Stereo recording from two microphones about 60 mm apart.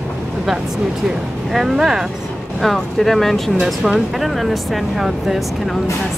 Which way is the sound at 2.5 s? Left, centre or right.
Centre.